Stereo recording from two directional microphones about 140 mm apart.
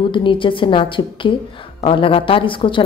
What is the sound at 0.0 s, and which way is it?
A woman's voice, 35° left (ahead or behind).